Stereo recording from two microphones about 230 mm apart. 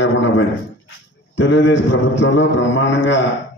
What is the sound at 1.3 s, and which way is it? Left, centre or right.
A man's voice, left.